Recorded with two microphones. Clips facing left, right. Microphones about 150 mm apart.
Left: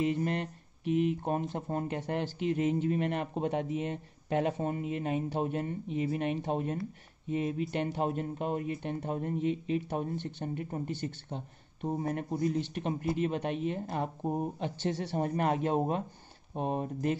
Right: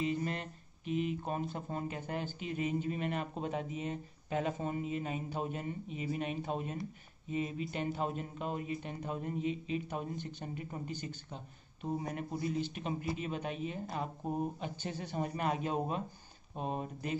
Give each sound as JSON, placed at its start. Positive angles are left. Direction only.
{"t": 0.0, "sound": "speech", "side_deg": 60}
{"t": 2.0, "sound": "speech", "side_deg": 70}
{"t": 14.6, "sound": "speech", "side_deg": 75}
{"t": 15.1, "sound": "speech", "side_deg": 55}